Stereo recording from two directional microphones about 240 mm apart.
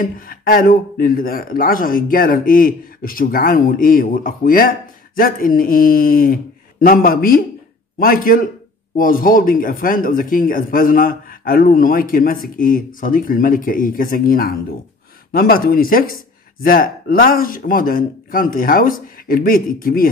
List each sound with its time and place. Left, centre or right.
0.0 s speech: left